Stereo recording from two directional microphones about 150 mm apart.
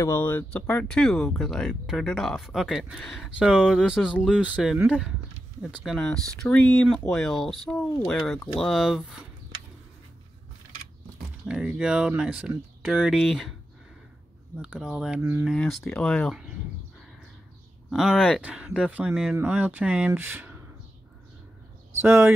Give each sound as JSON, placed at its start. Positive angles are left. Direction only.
{"t": 0.0, "sound": "speech", "side_deg": 15}
{"t": 5.9, "sound": "speech", "side_deg": 5}
{"t": 11.4, "sound": "speech", "side_deg": -5}
{"t": 14.6, "sound": "speech", "side_deg": -5}
{"t": 15.5, "sound": "speech", "side_deg": 5}
{"t": 17.9, "sound": "speech", "side_deg": -5}
{"t": 22.0, "sound": "speech", "side_deg": -20}